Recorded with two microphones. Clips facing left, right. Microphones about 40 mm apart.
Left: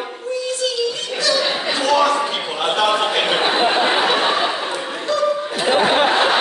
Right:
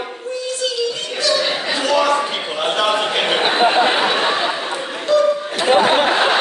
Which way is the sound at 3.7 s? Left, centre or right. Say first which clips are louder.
Right 1 dB; centre.